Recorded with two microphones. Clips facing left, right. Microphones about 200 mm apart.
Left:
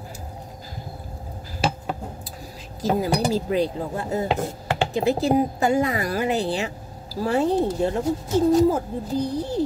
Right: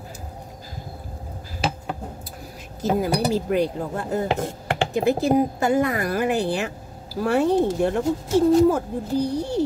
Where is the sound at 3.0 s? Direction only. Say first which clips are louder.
Right 1 dB; 60° right (ahead or behind).